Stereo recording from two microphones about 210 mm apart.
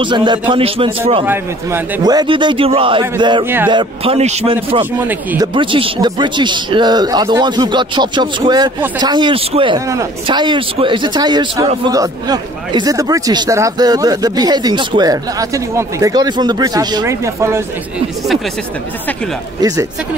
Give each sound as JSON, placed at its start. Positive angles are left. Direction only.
{"t": 0.0, "sound": "a man's voice", "side_deg": -20}
{"t": 1.2, "sound": "a man's voice", "side_deg": -10}
{"t": 3.4, "sound": "a man's voice", "side_deg": -10}
{"t": 3.7, "sound": "a man's voice", "side_deg": -25}
{"t": 5.0, "sound": "a man's voice", "side_deg": -10}
{"t": 5.5, "sound": "a man's voice", "side_deg": -25}